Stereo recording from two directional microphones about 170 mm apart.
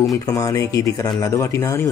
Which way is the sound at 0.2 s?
20° left (ahead or behind).